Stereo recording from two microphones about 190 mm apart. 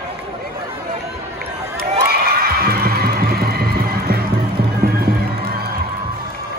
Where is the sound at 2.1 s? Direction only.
55° right (ahead or behind).